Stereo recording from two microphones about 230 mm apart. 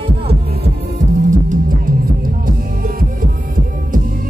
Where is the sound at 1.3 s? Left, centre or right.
Right.